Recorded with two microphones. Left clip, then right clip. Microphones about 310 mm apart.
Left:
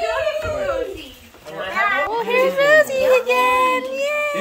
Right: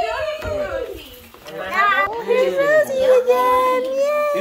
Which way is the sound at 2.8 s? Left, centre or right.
Centre.